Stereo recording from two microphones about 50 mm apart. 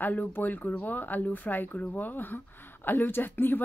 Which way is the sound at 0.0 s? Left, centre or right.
Left.